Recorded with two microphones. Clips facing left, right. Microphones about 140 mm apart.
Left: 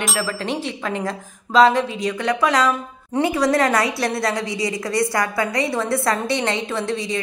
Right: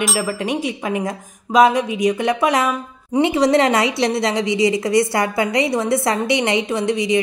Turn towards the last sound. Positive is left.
turn(degrees=-15)  # may be behind; listen again after turning